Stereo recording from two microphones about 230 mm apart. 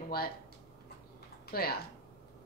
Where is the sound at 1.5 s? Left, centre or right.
Left.